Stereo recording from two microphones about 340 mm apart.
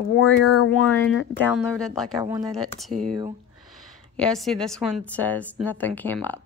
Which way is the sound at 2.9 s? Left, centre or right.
Right.